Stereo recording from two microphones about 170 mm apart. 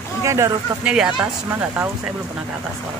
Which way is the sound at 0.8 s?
5° right (ahead or behind).